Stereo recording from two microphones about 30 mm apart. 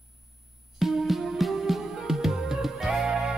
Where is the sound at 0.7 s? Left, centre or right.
Centre.